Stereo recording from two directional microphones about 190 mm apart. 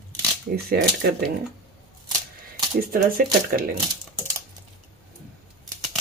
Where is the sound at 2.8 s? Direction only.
50° right (ahead or behind).